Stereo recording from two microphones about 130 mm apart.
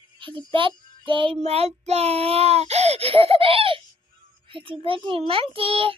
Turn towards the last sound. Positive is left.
turn(degrees=-45)  # may be behind; listen again after turning